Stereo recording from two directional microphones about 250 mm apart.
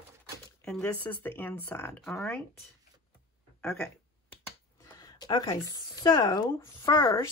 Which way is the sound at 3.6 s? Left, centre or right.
Centre.